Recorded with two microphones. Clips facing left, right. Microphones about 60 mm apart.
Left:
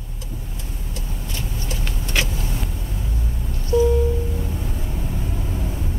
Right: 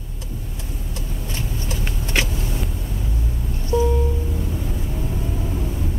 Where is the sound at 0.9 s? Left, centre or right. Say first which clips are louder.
Right 1 dB; right.